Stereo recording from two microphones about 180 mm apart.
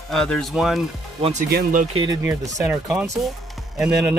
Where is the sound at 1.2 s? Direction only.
40° right (ahead or behind).